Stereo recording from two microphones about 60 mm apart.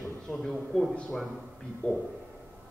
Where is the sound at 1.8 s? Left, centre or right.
Left.